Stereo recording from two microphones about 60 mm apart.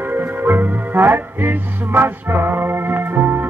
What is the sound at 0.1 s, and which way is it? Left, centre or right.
Music, right.